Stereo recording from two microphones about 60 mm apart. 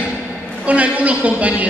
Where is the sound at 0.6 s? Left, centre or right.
Right.